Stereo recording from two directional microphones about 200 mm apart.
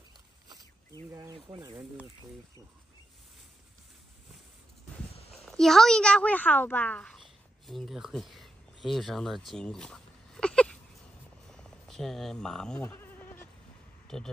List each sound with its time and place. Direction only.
1.1 s speech: 20° right (ahead or behind)
5.4 s speech: centre (ahead or behind)
11.5 s insect: centre (ahead or behind)
14.0 s speech: 5° left (ahead or behind)